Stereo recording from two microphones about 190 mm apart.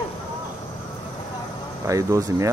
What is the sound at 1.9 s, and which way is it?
Speech, 15° right (ahead or behind).